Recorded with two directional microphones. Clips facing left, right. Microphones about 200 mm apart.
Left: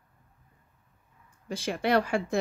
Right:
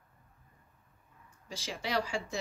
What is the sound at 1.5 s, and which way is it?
Speech, 55° left (ahead or behind).